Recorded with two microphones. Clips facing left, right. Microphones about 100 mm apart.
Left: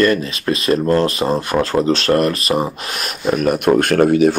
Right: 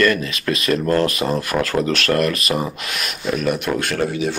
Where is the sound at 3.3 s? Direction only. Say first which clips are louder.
Left 6 dB; 45° left (ahead or behind).